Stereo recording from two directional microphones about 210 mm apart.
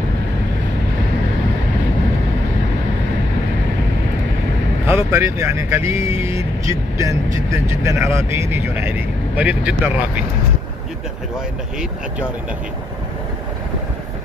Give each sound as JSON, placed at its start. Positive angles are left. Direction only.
{"t": 4.8, "sound": "speech", "side_deg": -10}